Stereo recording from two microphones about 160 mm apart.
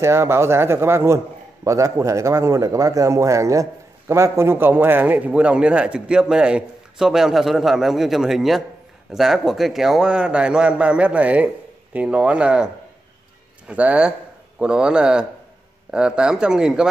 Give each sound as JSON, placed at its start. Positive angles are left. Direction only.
{"t": 0.0, "sound": "a man's voice", "side_deg": -15}